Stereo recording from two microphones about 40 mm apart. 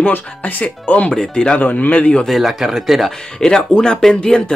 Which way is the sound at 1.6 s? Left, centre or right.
Left.